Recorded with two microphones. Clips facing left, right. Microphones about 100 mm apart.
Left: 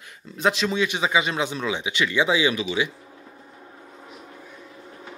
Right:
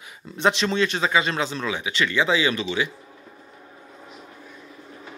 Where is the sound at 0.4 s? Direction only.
5° left (ahead or behind).